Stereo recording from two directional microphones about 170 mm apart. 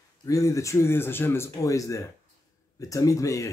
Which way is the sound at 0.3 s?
20° left (ahead or behind).